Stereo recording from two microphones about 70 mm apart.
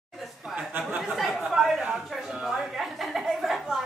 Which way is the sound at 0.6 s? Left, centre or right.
Centre.